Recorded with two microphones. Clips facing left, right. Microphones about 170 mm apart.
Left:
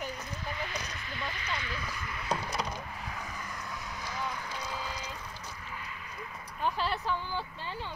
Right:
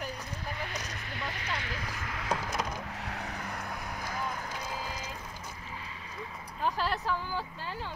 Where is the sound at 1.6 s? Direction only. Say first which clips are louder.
Even; 75° right (ahead or behind).